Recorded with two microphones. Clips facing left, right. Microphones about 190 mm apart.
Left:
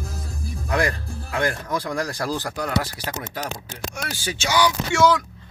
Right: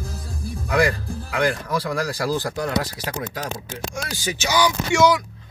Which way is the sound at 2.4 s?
20° right (ahead or behind).